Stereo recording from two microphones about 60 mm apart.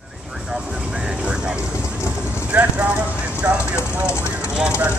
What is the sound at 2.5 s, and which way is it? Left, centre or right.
Speech, right.